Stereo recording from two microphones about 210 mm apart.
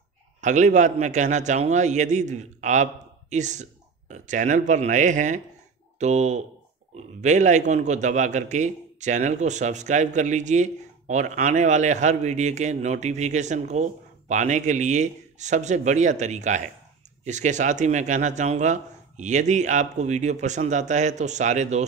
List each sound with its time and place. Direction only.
0.4 s a man's voice: 35° right (ahead or behind)